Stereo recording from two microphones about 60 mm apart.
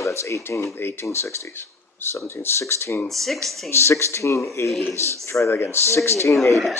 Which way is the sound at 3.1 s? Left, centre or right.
Centre.